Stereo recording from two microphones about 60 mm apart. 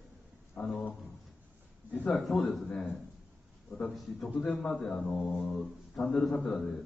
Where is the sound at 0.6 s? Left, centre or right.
Centre.